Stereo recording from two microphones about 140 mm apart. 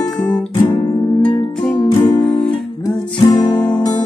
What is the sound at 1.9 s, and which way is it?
Music, 30° left (ahead or behind).